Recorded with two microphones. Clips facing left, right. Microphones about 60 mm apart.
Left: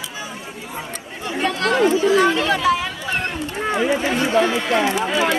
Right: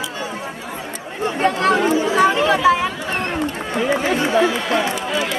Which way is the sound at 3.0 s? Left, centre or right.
Right.